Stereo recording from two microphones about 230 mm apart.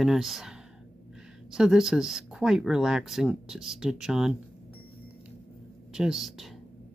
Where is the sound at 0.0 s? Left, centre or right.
Centre.